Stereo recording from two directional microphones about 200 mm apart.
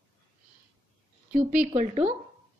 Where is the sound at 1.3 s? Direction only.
35° right (ahead or behind).